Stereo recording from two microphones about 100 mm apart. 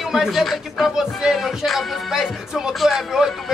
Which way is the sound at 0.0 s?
Centre (ahead or behind).